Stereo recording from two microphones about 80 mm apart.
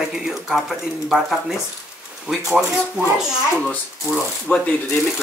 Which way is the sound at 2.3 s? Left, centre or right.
Centre.